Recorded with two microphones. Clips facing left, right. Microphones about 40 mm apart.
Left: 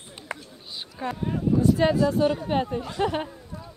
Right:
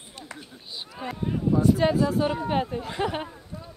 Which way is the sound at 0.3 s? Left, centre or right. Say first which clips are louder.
Left 7 dB; left.